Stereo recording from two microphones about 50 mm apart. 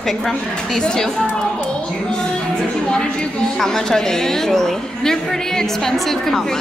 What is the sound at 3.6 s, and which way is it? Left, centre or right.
A woman's voice, centre.